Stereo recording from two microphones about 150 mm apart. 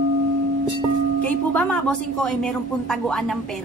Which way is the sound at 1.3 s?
10° left (ahead or behind).